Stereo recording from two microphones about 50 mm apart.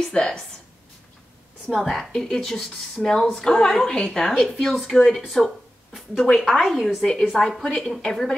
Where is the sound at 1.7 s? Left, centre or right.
Centre.